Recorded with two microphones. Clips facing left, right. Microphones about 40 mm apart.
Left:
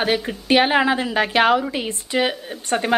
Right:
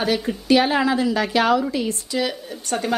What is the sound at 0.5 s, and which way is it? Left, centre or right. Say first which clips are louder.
A woman's voice: left 1 dB; left.